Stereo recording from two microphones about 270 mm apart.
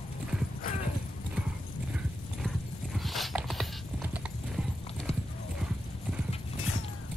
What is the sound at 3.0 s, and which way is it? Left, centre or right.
Clip-clop, centre.